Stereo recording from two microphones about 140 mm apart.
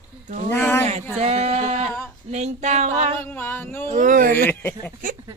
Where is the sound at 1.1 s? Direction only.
45° right (ahead or behind).